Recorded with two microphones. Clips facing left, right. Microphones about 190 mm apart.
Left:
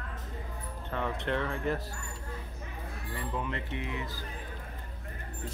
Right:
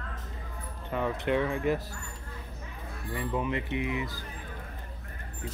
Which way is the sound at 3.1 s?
15° right (ahead or behind).